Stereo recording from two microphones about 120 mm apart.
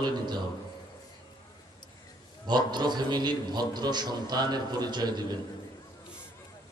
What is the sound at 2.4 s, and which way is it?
A man's voice, 35° right (ahead or behind).